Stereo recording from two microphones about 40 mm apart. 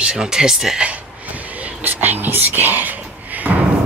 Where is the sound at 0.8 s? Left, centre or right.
Right.